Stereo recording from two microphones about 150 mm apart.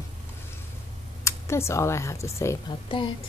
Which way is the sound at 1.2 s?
15° left (ahead or behind).